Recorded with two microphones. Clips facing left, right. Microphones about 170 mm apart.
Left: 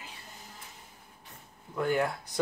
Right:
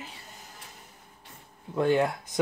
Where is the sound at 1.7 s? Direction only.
25° right (ahead or behind).